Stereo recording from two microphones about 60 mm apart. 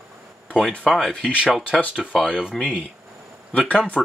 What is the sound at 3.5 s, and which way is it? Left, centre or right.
Speech, centre.